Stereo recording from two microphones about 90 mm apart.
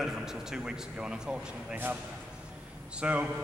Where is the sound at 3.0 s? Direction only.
15° right (ahead or behind).